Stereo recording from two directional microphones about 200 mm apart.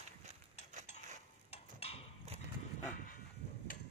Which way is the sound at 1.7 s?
30° left (ahead or behind).